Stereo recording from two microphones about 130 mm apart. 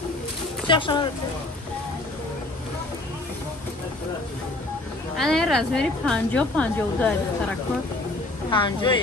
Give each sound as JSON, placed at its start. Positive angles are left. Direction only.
{"t": 0.7, "sound": "speech", "side_deg": 40}
{"t": 5.1, "sound": "a woman's voice", "side_deg": 0}
{"t": 8.5, "sound": "speech", "side_deg": 40}